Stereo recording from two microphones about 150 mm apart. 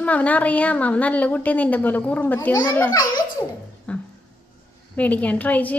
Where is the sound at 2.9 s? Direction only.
25° left (ahead or behind).